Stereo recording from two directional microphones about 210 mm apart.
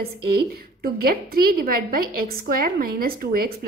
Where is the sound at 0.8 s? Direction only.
45° right (ahead or behind).